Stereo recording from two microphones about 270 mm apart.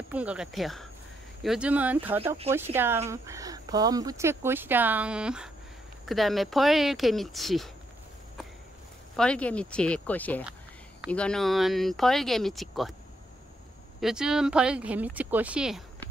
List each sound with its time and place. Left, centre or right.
0.1 s speech: centre
2.2 s speech: right
2.5 s speech: centre
9.1 s speech: centre
14.0 s speech: centre